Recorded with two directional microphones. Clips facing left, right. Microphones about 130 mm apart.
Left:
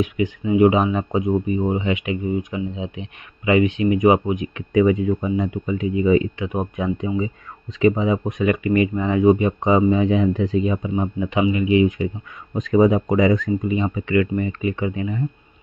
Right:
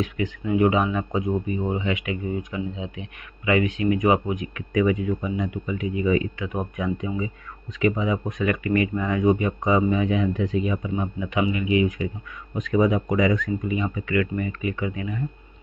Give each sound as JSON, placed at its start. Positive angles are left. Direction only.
{"t": 0.5, "sound": "speech", "side_deg": 20}